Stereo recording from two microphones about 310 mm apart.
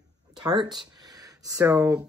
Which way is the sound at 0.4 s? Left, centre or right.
Centre.